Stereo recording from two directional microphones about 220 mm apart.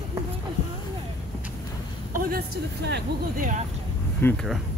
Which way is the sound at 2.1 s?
45° right (ahead or behind).